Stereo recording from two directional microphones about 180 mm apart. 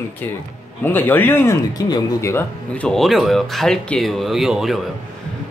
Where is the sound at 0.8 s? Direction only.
10° left (ahead or behind).